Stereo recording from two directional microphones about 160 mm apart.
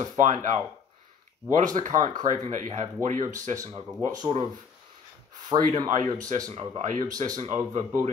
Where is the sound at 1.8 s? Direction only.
50° right (ahead or behind).